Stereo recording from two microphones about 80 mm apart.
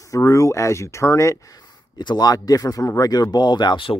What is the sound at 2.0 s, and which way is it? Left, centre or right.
Speech, left.